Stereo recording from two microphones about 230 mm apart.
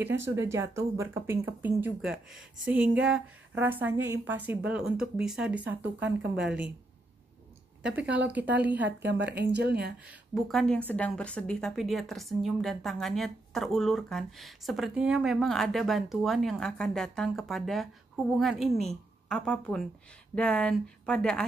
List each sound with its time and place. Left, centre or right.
0.4 s a woman's voice: centre
7.8 s a woman's voice: centre
8.8 s speech: right
10.3 s a woman's voice: centre